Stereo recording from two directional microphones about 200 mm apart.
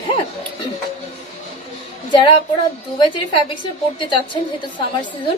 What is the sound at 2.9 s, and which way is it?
A woman's voice, 25° left (ahead or behind).